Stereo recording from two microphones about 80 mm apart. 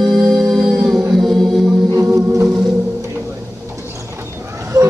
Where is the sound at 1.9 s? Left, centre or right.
Right.